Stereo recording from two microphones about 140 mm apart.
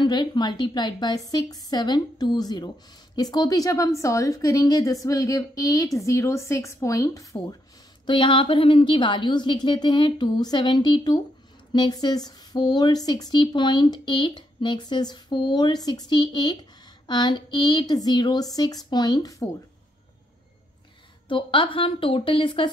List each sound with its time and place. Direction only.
0.0 s a woman's voice: 30° left (ahead or behind)
8.1 s a woman's voice: 35° left (ahead or behind)
21.3 s speech: 35° left (ahead or behind)